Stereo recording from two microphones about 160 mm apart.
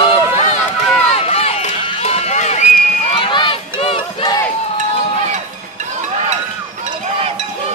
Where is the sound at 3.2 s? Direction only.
30° left (ahead or behind).